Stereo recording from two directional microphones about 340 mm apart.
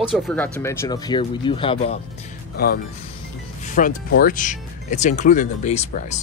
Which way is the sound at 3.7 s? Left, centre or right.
Left.